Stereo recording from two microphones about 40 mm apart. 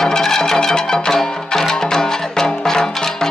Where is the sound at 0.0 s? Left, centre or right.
Centre.